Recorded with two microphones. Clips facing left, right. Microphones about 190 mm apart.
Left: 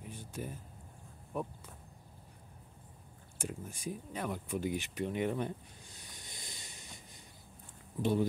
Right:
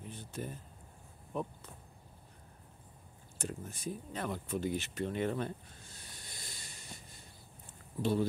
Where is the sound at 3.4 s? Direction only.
10° left (ahead or behind).